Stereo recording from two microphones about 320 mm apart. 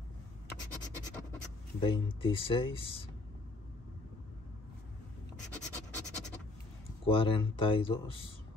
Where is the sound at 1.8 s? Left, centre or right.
Centre.